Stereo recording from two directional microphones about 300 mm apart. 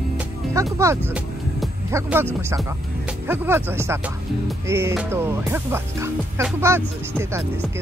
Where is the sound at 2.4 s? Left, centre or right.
Centre.